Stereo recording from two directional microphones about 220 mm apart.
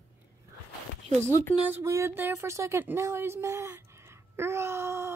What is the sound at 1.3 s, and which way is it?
Speech, 10° left (ahead or behind).